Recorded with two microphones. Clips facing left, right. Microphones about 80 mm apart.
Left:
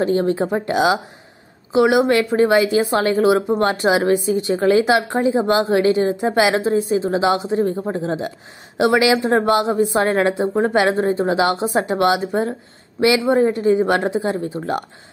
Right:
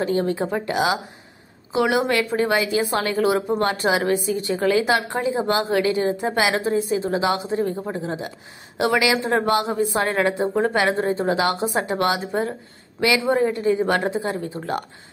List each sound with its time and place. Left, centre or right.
0.0 s a woman's voice: left